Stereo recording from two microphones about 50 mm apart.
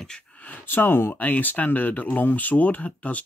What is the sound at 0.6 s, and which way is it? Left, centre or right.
Speech, left.